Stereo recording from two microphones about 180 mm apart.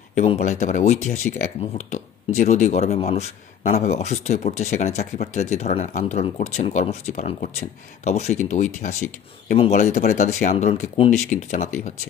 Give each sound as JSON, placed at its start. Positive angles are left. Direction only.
{"t": 0.1, "sound": "speech", "side_deg": 40}